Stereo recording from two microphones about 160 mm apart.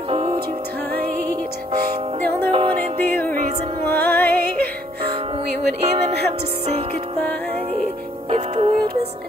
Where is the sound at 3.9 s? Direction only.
10° left (ahead or behind).